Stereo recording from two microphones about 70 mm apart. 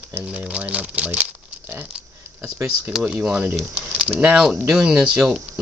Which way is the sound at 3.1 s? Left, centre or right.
Centre.